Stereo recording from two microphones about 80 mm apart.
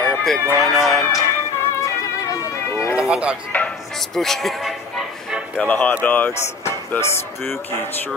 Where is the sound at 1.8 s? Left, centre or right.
Left.